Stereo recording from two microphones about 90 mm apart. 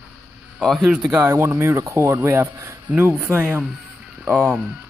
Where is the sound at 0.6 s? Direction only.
Centre (ahead or behind).